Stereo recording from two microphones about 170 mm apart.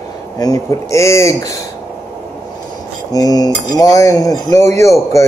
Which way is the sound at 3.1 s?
20° left (ahead or behind).